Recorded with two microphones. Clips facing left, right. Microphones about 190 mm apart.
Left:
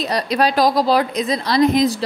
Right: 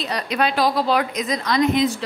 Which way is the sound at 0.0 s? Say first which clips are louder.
Left 4 dB; 35° left (ahead or behind).